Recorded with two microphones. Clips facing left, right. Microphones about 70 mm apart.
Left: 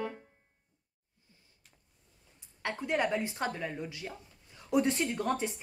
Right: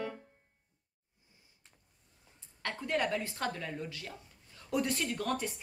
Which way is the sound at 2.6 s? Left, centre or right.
Centre.